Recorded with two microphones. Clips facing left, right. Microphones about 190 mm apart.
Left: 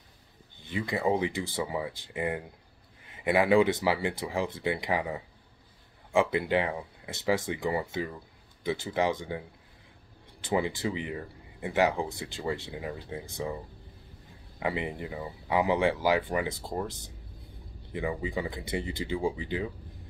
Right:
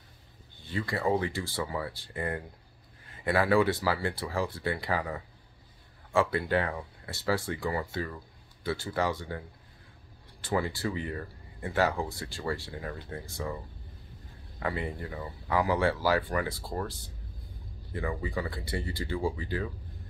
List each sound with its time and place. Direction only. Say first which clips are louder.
0.6 s speech: left 1 dB; 20° left (ahead or behind)
10.4 s speech: left 2 dB; 20° left (ahead or behind)
14.6 s speech: left 2 dB; 15° left (ahead or behind)